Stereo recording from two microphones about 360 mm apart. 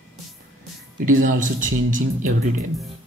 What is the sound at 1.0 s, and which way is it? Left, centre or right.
Speech, right.